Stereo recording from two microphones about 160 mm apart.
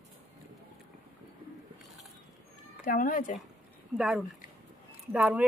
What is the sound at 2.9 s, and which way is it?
Speech, 55° left (ahead or behind).